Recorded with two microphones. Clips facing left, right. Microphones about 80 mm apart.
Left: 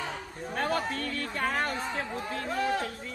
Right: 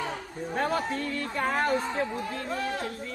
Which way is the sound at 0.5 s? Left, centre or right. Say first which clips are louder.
Right 2 dB; centre.